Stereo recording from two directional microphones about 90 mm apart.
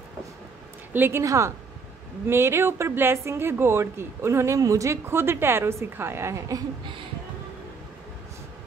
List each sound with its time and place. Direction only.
0.9 s speech: 25° right (ahead or behind)
1.2 s a woman's voice: 35° right (ahead or behind)